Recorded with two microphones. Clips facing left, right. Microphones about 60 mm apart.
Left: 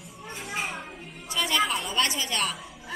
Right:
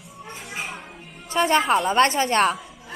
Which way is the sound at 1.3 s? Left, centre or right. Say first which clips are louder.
Right 7 dB; right.